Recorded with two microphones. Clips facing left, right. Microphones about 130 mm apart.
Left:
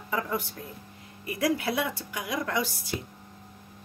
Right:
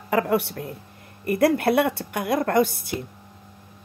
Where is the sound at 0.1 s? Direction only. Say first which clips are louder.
Right 9 dB; 75° right (ahead or behind); by 3.1 s 55° right (ahead or behind).